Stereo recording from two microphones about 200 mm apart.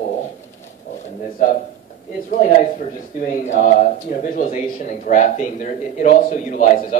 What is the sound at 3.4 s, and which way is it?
A man's voice, 40° left (ahead or behind).